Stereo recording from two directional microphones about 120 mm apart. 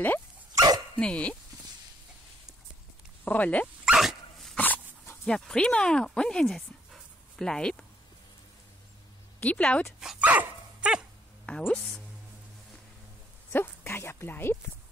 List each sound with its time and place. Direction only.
0.9 s speech: 10° left (ahead or behind)
3.3 s speech: 10° left (ahead or behind)
3.8 s dog: 5° right (ahead or behind)
4.6 s dog: 15° left (ahead or behind)
5.2 s speech: 5° left (ahead or behind)
9.4 s speech: 10° left (ahead or behind)
9.9 s dog: 10° right (ahead or behind)
11.4 s speech: 10° left (ahead or behind)
13.5 s speech: 20° left (ahead or behind)